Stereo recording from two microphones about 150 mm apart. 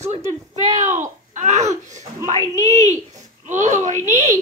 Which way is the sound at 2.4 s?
20° left (ahead or behind).